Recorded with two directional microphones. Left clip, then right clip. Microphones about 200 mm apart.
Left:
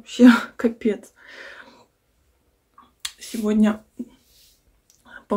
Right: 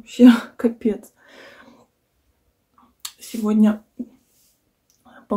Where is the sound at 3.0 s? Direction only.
5° right (ahead or behind).